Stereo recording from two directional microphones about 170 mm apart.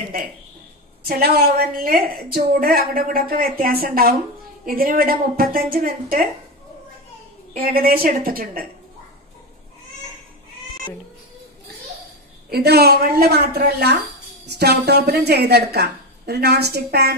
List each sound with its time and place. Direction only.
1.0 s a woman's voice: 65° right (ahead or behind)
7.5 s a woman's voice: 60° right (ahead or behind)
12.4 s a woman's voice: 70° right (ahead or behind)